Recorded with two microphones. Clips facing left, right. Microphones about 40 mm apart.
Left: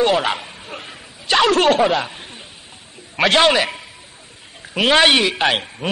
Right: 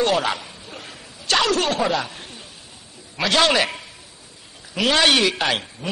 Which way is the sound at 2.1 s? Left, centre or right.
Left.